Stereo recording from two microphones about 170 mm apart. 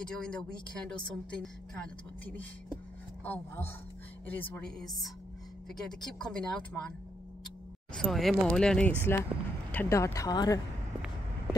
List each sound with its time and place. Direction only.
0.0 s speech: 5° left (ahead or behind)
7.9 s speech: 5° left (ahead or behind); by 10.6 s 20° left (ahead or behind)